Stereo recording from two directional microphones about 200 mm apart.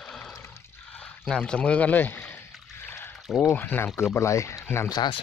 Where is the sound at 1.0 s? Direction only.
5° left (ahead or behind).